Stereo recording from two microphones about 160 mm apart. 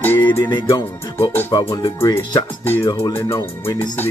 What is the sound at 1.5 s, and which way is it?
Speech, 25° left (ahead or behind).